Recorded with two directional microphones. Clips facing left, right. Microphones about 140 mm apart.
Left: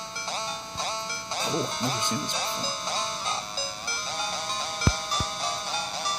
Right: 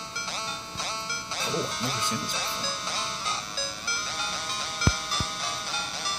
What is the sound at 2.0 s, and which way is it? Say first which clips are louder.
Speech: left 2 dB; 25° left (ahead or behind).